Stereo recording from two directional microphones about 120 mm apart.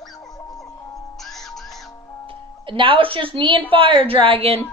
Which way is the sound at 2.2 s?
45° right (ahead or behind).